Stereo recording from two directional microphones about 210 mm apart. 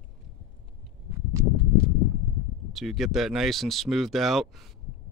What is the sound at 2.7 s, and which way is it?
Speech, centre (ahead or behind).